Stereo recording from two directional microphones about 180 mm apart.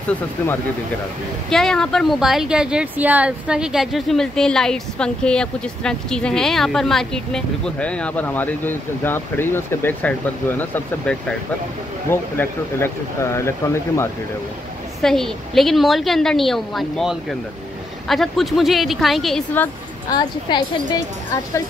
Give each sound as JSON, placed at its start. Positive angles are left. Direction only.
{"t": 1.5, "sound": "speech", "side_deg": 5}
{"t": 15.0, "sound": "speech", "side_deg": 0}
{"t": 20.1, "sound": "a woman's voice", "side_deg": 25}